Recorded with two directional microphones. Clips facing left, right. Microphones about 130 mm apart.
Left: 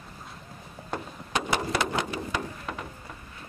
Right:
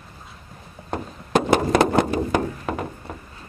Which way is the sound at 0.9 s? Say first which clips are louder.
Right 9 dB; 45° right (ahead or behind).